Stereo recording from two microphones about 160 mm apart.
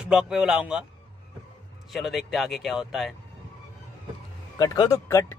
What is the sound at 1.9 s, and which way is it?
Speech, centre (ahead or behind).